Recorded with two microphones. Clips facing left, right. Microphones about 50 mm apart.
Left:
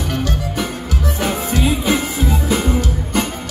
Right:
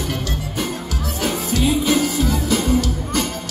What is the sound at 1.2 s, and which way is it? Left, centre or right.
Music, left.